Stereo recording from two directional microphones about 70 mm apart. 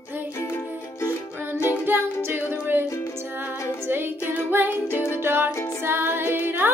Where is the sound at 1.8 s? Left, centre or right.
Right.